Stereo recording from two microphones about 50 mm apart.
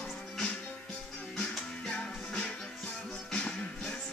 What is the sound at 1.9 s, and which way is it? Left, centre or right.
Music, centre.